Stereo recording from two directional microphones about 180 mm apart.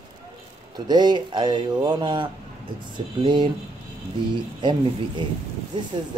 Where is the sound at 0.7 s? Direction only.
25° right (ahead or behind).